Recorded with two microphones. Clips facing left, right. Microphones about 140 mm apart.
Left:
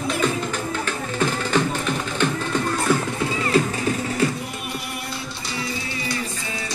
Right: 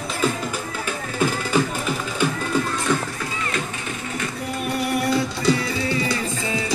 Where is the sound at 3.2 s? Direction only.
30° left (ahead or behind).